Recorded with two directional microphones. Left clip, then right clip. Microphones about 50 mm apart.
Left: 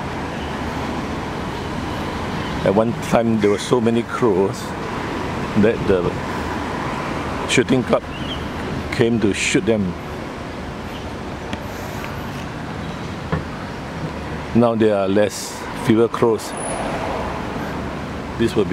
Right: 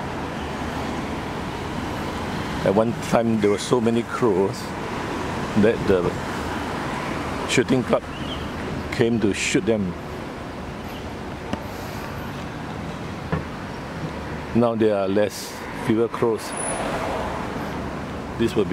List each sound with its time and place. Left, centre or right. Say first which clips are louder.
2.7 s speech: left 3 dB; centre
5.6 s speech: left 2 dB; centre
7.4 s speech: left 3 dB; centre
14.6 s speech: left 4 dB; centre
15.9 s speech: left 5 dB; left
16.7 s vehicle: left 2 dB; right
18.4 s speech: left 3 dB; centre